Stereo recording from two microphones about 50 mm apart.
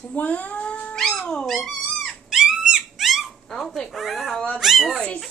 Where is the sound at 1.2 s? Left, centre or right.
Centre.